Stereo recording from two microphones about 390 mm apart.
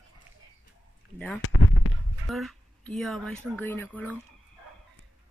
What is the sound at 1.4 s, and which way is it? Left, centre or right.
Fireworks, left.